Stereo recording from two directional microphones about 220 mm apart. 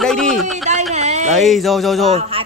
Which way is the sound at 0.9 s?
30° right (ahead or behind).